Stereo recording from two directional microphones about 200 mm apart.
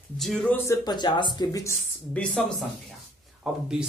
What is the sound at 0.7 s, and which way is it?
Speech, 20° left (ahead or behind).